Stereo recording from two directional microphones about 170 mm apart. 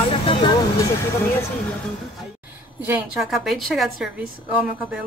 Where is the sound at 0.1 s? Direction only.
30° left (ahead or behind).